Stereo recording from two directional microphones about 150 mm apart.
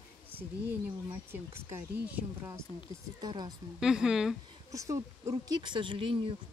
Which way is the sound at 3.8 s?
5° right (ahead or behind).